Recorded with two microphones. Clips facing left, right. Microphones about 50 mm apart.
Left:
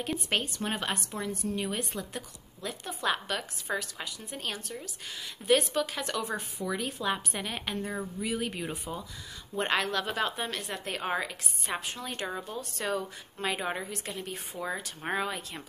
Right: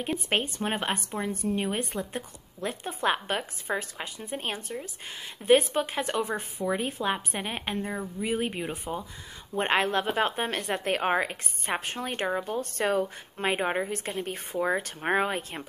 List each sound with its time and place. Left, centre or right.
0.3 s a woman's voice: right